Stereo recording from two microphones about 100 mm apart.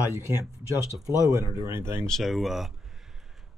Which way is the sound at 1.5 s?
30° right (ahead or behind).